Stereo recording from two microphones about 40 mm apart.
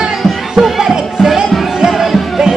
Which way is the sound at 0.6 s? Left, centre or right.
Centre.